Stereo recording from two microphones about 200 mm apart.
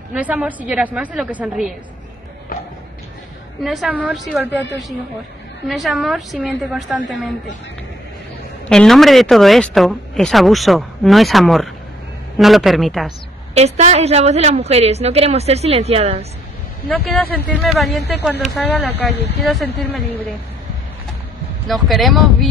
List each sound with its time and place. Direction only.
0.1 s a woman's voice: 5° right (ahead or behind)
2.5 s a sound: 45° left (ahead or behind)
3.6 s speech: centre (ahead or behind)
5.7 s speech: centre (ahead or behind)
8.6 s speech: 5° left (ahead or behind)
13.6 s a woman's voice: 35° right (ahead or behind)
16.9 s speech: 10° left (ahead or behind)
21.6 s speech: centre (ahead or behind)